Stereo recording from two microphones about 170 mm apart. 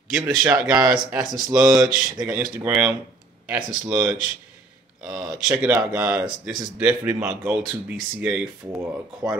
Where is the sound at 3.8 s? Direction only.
10° right (ahead or behind).